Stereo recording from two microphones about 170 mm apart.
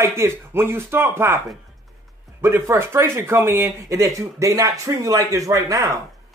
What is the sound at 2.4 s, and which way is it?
Speech, 15° right (ahead or behind).